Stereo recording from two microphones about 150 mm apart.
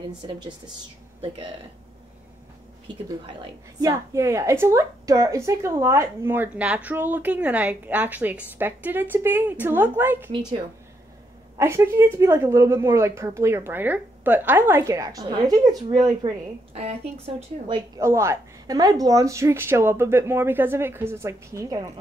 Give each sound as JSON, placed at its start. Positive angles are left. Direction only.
{"t": 0.2, "sound": "speech", "side_deg": -30}
{"t": 3.8, "sound": "a woman's voice", "side_deg": -20}
{"t": 11.5, "sound": "speech", "side_deg": -20}
{"t": 16.7, "sound": "a woman's voice", "side_deg": -45}
{"t": 17.6, "sound": "speech", "side_deg": -30}
{"t": 18.0, "sound": "speech", "side_deg": -20}